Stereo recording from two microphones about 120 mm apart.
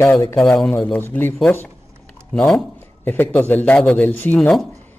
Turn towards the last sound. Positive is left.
turn(degrees=5)  # may be behind; listen again after turning